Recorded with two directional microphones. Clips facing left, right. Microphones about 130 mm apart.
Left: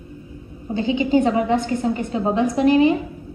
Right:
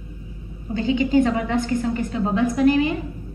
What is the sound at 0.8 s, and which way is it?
A woman's voice, 20° left (ahead or behind).